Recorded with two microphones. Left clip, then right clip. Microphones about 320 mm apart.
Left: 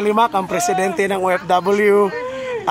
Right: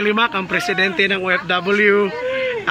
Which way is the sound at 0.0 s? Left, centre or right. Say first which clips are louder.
Left 2 dB; centre.